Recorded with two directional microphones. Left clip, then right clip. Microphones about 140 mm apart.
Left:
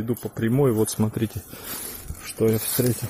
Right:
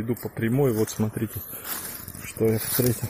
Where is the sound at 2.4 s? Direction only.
25° left (ahead or behind).